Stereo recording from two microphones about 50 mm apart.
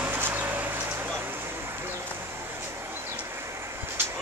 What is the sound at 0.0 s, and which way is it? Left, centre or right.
Vehicle, right.